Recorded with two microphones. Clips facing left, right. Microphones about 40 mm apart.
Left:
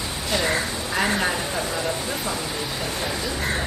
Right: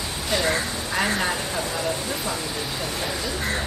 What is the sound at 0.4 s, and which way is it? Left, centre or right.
Speech, centre.